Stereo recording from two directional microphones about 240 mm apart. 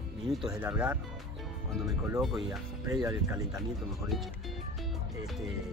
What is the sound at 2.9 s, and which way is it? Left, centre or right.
Speech, centre.